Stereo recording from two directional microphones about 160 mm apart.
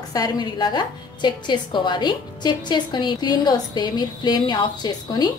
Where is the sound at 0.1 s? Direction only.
25° left (ahead or behind).